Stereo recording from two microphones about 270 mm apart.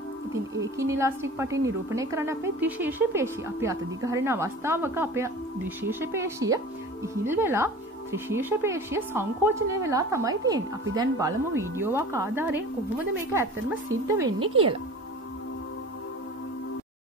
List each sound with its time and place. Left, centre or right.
0.3 s a woman's voice: centre